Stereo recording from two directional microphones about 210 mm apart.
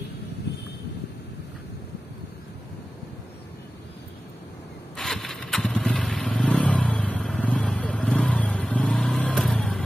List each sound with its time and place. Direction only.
0.5 s vehicle: 50° left (ahead or behind)
4.9 s motorcycle: centre (ahead or behind)